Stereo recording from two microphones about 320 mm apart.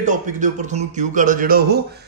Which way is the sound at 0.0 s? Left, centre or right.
Right.